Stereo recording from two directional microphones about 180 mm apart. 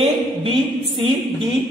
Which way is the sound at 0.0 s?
30° right (ahead or behind).